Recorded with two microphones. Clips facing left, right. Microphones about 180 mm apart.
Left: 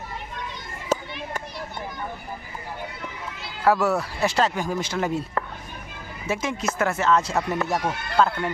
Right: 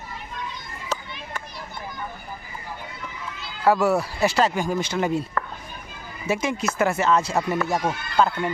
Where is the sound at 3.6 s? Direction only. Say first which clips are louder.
Right 1 dB; centre (ahead or behind).